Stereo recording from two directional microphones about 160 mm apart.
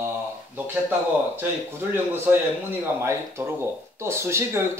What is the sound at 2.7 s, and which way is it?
A man's voice, 15° right (ahead or behind).